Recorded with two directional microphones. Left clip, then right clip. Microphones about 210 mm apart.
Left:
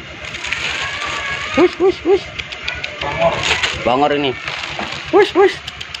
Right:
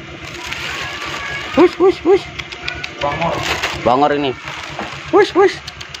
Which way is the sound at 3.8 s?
10° right (ahead or behind).